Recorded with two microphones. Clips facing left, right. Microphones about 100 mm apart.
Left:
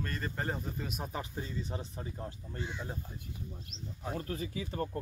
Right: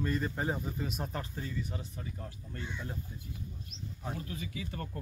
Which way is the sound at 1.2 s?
25° left (ahead or behind).